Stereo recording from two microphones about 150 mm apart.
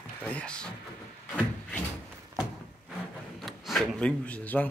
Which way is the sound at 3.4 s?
Centre (ahead or behind).